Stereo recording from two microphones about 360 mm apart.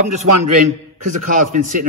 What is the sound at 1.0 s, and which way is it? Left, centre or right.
Speech, right.